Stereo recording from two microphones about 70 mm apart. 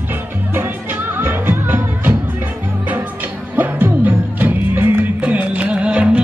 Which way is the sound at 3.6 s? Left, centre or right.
Right.